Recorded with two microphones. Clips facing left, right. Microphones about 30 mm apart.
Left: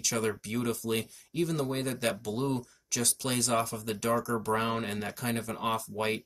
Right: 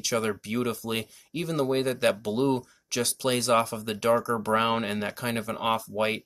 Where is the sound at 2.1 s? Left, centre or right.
Right.